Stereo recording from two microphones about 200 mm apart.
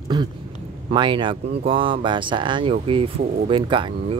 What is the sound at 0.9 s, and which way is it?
Speech, 25° right (ahead or behind).